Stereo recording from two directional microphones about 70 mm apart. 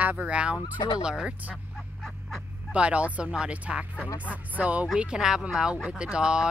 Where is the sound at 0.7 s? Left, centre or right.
Left.